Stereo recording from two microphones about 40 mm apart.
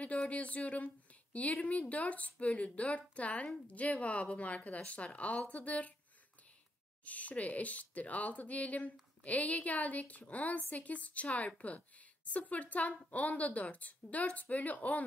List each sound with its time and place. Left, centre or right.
0.3 s a woman's voice: left
7.1 s a woman's voice: left